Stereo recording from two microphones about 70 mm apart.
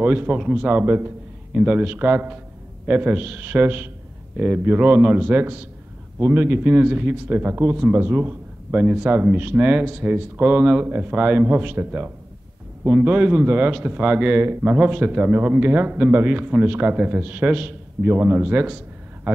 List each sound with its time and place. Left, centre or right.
0.0 s a man's voice: right
1.5 s a man's voice: centre
5.4 s a man's voice: right
14.4 s a man's voice: right
14.7 s a man's voice: right